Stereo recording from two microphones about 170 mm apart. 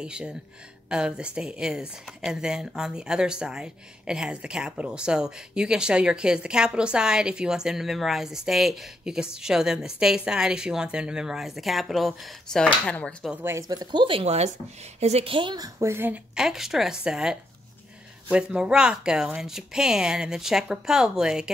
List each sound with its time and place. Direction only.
0.0 s a woman's voice: 5° right (ahead or behind)
13.3 s a woman's voice: 15° right (ahead or behind)